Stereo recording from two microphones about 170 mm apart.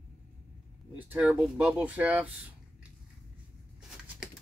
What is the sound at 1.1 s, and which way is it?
Speech, 5° right (ahead or behind).